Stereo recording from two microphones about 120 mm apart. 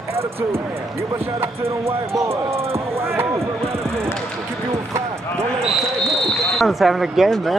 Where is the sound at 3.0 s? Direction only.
20° right (ahead or behind).